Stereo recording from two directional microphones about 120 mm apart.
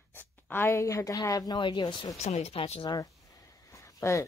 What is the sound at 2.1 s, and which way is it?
Speech, 60° left (ahead or behind).